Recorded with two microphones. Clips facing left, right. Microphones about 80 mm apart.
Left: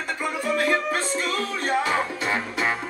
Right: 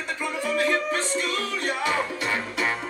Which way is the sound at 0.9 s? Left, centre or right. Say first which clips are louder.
Left 1 dB; left.